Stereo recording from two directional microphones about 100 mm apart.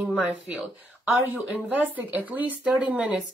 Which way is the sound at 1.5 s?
15° right (ahead or behind).